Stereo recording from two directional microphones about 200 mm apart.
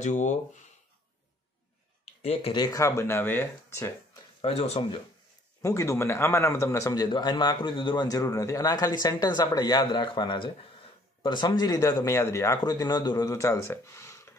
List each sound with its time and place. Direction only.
0.0 s speech: 35° left (ahead or behind)
2.2 s a man's voice: 30° left (ahead or behind); by 4.2 s 15° left (ahead or behind)
4.4 s a man's voice: 30° left (ahead or behind)
5.6 s a man's voice: 15° left (ahead or behind)